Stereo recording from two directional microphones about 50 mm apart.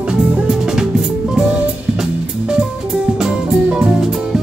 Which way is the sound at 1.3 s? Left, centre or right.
Centre.